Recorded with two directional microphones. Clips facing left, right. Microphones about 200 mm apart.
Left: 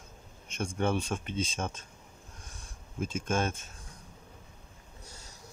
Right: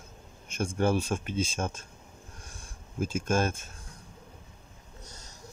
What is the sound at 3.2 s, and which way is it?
Speech, 5° right (ahead or behind).